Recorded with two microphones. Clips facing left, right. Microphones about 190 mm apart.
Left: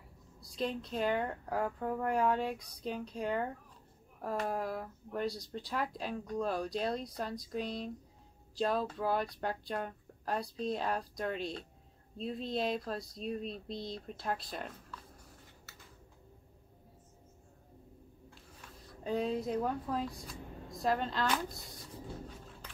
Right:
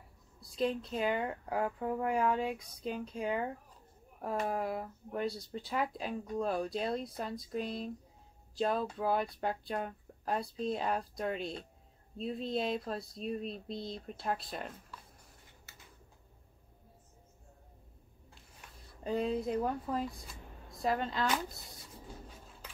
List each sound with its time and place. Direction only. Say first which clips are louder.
0.6 s speech: right 2 dB; centre (ahead or behind)
19.0 s speech: right 1 dB; centre (ahead or behind)